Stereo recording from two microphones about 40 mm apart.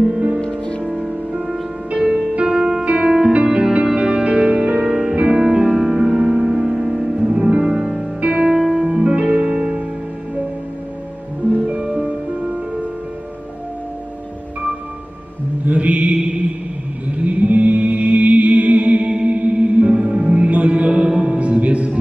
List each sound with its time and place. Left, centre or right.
0.4 s music: left
1.0 s music: centre
9.0 s music: right
11.6 s music: right
15.6 s mantra: right
17.1 s music: right